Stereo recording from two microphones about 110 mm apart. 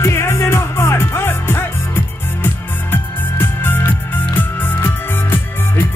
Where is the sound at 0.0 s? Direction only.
25° left (ahead or behind).